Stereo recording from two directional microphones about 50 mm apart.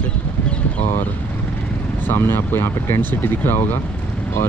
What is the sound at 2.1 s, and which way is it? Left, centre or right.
Speech, left.